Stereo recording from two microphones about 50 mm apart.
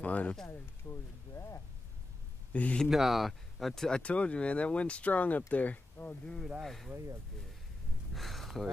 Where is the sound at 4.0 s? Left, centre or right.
Left.